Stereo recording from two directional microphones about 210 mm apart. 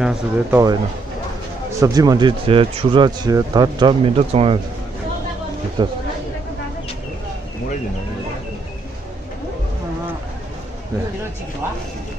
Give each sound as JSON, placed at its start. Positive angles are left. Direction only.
{"t": 0.0, "sound": "speech", "side_deg": -5}
{"t": 1.7, "sound": "speech", "side_deg": -15}
{"t": 5.8, "sound": "speech", "side_deg": -20}